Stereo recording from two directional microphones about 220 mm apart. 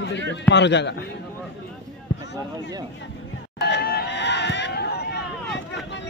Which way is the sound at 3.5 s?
50° left (ahead or behind).